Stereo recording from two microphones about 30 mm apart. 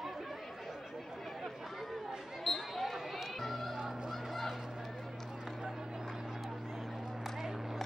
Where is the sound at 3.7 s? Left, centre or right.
Right.